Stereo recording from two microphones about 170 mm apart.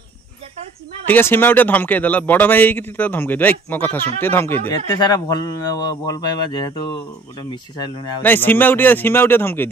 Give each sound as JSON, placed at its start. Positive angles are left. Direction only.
{"t": 1.0, "sound": "a man's voice", "side_deg": 10}
{"t": 4.7, "sound": "speech", "side_deg": 25}
{"t": 8.2, "sound": "a man's voice", "side_deg": 10}